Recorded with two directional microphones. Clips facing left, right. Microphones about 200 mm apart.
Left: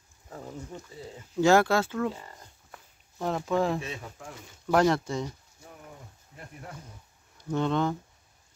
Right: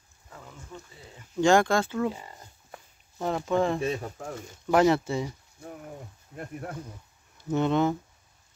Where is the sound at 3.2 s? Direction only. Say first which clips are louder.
Right 1 dB; centre (ahead or behind).